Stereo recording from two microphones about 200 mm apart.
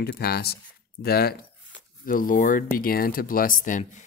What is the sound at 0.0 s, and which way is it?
Speech, 55° left (ahead or behind).